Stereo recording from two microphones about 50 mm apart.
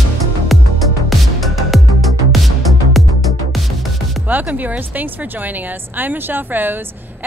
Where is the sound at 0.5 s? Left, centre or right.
Centre.